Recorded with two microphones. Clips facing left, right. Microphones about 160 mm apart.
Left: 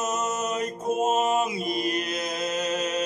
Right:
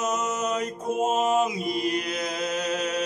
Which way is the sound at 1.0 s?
15° left (ahead or behind).